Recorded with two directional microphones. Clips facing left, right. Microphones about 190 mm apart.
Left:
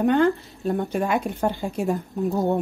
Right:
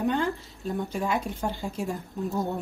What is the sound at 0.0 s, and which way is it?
A woman's voice, 60° left (ahead or behind).